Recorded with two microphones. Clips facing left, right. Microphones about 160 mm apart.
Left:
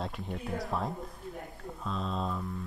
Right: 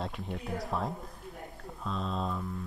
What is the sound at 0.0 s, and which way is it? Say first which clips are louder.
Speech: even; centre (ahead or behind).